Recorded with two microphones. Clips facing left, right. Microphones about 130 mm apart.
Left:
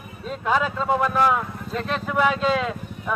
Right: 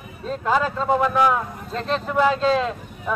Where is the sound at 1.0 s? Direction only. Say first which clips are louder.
Right 1 dB; 15° right (ahead or behind).